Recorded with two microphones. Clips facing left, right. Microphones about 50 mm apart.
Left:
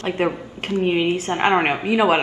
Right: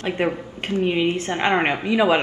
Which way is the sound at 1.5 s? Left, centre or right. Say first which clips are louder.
Left 2 dB; centre.